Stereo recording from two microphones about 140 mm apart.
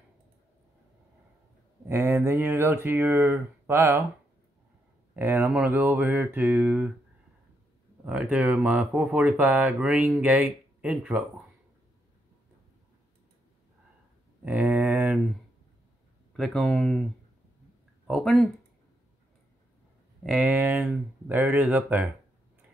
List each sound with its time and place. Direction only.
1.9 s speech: 15° right (ahead or behind)
5.1 s speech: 15° right (ahead or behind)
8.0 s speech: 10° right (ahead or behind)
14.4 s speech: 10° right (ahead or behind)
16.3 s speech: centre (ahead or behind)
20.2 s speech: 10° right (ahead or behind)